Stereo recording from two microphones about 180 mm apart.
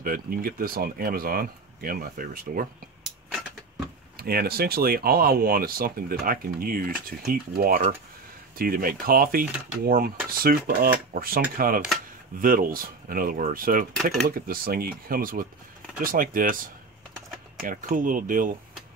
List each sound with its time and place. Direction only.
0.0 s speech: 50° right (ahead or behind)
4.2 s speech: 55° right (ahead or behind)
17.6 s speech: 50° right (ahead or behind)